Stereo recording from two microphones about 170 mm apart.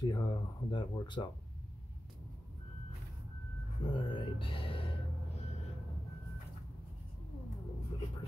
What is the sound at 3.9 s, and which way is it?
Speech, 30° left (ahead or behind).